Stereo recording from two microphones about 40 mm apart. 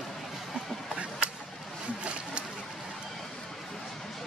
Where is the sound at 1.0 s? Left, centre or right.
Right.